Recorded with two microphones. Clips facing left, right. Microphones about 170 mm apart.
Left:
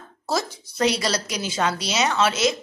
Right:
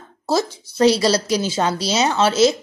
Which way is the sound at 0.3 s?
30° right (ahead or behind).